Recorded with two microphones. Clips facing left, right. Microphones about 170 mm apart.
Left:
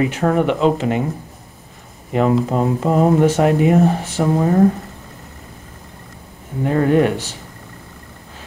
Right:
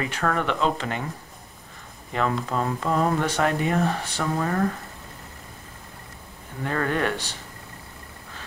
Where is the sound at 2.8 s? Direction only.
40° left (ahead or behind).